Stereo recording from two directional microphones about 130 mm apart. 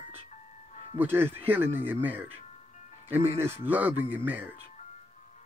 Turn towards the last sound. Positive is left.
turn(degrees=-15)  # may be behind; listen again after turning